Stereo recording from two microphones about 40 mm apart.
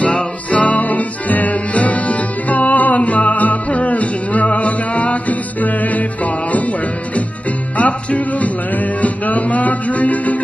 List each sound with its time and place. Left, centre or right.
0.0 s music: left
7.7 s music: left